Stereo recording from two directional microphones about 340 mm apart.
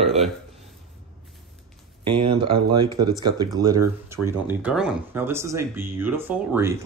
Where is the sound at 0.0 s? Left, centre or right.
Centre.